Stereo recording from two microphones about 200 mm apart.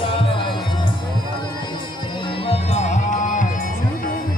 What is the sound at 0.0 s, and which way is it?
Music, 25° left (ahead or behind).